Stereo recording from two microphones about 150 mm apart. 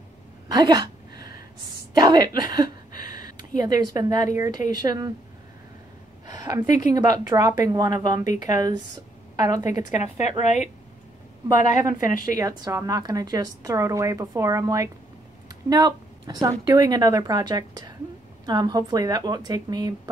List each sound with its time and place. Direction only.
0.5 s a sound: 25° right (ahead or behind)
2.0 s a woman's voice: 25° right (ahead or behind)
6.2 s a woman's voice: 25° right (ahead or behind)
10.4 s a woman's voice: 50° left (ahead or behind)
12.4 s a woman's voice: 20° right (ahead or behind)